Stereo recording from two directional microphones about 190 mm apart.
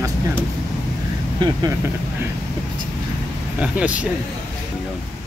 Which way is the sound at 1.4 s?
25° right (ahead or behind).